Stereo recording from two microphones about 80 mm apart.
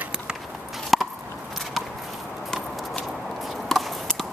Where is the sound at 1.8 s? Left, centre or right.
Centre.